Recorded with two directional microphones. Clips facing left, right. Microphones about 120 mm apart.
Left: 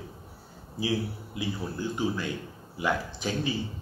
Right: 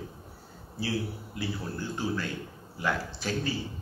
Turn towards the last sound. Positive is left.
turn(degrees=15)  # may be behind; listen again after turning